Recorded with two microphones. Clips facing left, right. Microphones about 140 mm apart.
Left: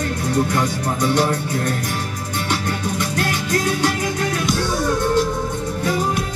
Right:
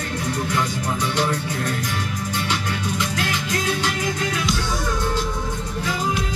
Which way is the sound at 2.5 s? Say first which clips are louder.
Left 3 dB; 45° left (ahead or behind).